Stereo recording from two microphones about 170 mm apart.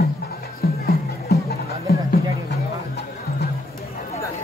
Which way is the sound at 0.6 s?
65° left (ahead or behind).